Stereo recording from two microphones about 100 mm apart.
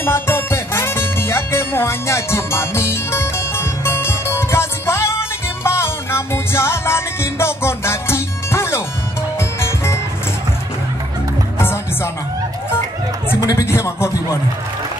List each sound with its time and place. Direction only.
0.0 s music: 25° left (ahead or behind)
11.5 s music: 25° left (ahead or behind)
13.5 s a man's voice: 30° left (ahead or behind)